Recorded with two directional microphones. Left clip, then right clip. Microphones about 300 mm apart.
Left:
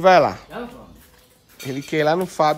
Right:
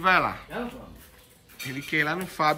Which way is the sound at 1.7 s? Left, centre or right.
Centre.